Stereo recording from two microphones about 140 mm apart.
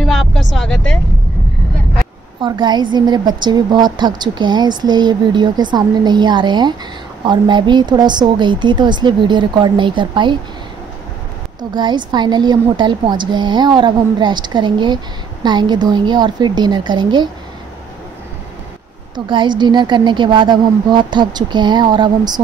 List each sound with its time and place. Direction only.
0.0 s vehicle: 5° left (ahead or behind)
2.4 s a woman's voice: 35° right (ahead or behind)
11.7 s a woman's voice: 30° right (ahead or behind)
19.1 s a woman's voice: 35° right (ahead or behind)